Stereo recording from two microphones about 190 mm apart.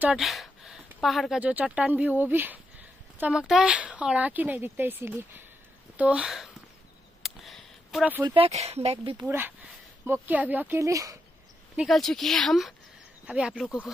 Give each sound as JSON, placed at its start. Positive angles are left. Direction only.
{"t": 0.0, "sound": "speech", "side_deg": -5}
{"t": 7.2, "sound": "a sound", "side_deg": 0}
{"t": 8.2, "sound": "speech", "side_deg": -25}
{"t": 9.2, "sound": "speech", "side_deg": -10}
{"t": 11.7, "sound": "speech", "side_deg": 0}